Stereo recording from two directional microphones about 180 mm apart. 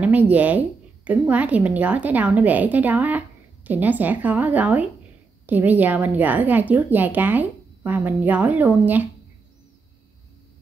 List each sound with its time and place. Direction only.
0.0 s a woman's voice: 10° right (ahead or behind)